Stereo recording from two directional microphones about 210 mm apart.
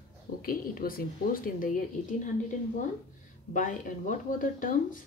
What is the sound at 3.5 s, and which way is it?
Speech, 40° left (ahead or behind).